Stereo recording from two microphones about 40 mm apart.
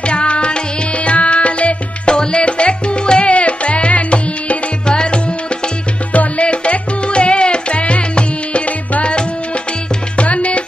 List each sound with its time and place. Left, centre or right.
0.0 s music: left
10.1 s music: left